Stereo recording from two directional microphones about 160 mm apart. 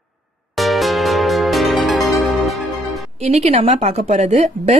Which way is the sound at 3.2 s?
40° right (ahead or behind).